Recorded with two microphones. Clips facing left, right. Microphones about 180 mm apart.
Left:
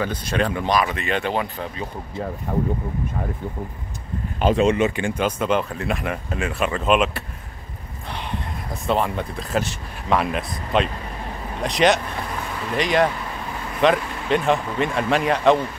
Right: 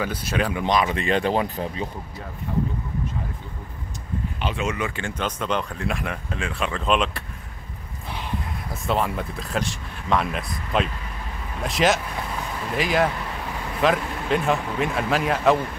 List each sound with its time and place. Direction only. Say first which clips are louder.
0.0 s speech: left 2 dB; 5° right (ahead or behind)
0.7 s speech: even; 20° right (ahead or behind)
2.5 s speech: left 1 dB; 50° left (ahead or behind)
4.4 s speech: left 10 dB; 40° left (ahead or behind); by 7.2 s 5° left (ahead or behind)
8.8 s speech: left 2 dB; centre (ahead or behind)